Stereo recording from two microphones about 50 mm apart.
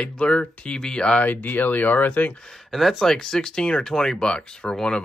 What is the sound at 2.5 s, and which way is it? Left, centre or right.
Speech, centre.